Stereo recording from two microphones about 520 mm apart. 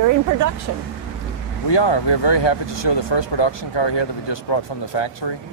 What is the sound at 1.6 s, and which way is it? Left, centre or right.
Speech, left.